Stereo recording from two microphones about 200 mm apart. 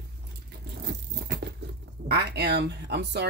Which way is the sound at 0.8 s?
60° right (ahead or behind).